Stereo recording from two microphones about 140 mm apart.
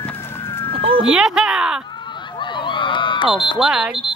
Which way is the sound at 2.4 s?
35° left (ahead or behind).